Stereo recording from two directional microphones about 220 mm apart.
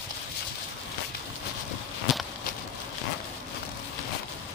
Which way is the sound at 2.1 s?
Centre (ahead or behind).